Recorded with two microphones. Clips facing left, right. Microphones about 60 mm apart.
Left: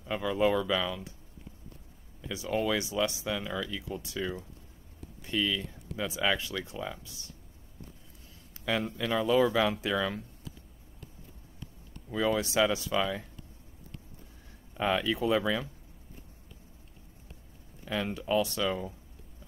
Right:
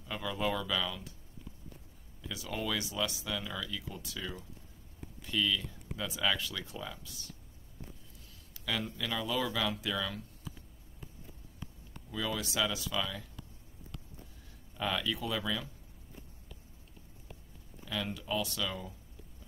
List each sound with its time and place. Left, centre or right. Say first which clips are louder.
0.0 s speech: left 7 dB; left
2.2 s speech: left 7 dB; left
8.6 s speech: left 6 dB; left
12.1 s speech: left 8 dB; left
14.8 s speech: left 6 dB; left
17.8 s speech: left 5 dB; left